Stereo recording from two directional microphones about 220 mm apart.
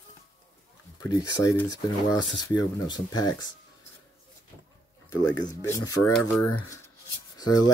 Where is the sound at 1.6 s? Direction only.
15° left (ahead or behind).